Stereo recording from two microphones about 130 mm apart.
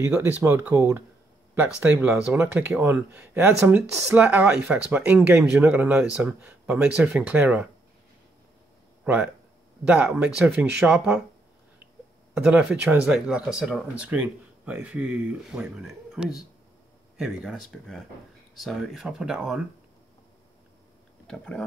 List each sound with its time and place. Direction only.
0.5 s speech: 15° right (ahead or behind)
9.0 s speech: 10° right (ahead or behind)
12.4 s speech: 10° right (ahead or behind)
21.3 s speech: 5° left (ahead or behind)